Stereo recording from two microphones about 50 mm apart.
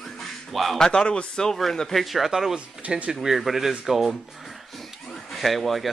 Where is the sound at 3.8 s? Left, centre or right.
Centre.